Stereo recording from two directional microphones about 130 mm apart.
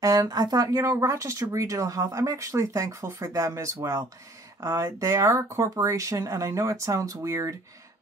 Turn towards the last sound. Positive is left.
turn(degrees=-25)  # may be behind; listen again after turning